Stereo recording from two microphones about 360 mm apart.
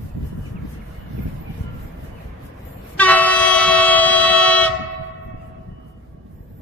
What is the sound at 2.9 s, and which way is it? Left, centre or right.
Train, centre.